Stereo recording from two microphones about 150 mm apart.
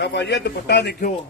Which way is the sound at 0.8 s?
75° left (ahead or behind).